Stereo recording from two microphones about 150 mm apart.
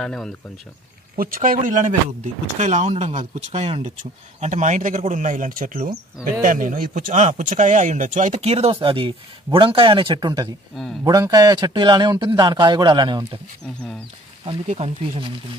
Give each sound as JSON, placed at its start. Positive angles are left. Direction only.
{"t": 0.0, "sound": "speech", "side_deg": 5}
{"t": 1.1, "sound": "speech", "side_deg": -70}